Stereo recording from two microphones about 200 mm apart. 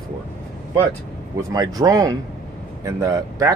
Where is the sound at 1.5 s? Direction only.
15° right (ahead or behind).